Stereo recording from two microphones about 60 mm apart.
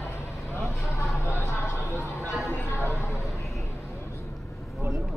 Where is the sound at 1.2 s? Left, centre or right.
Left.